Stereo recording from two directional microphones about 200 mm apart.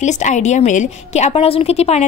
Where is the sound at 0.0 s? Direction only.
35° left (ahead or behind).